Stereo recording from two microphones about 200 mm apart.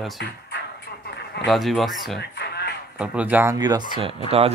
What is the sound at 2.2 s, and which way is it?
Music, 55° left (ahead or behind).